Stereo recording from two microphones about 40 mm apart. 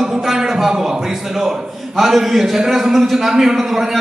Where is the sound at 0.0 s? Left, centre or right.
Centre.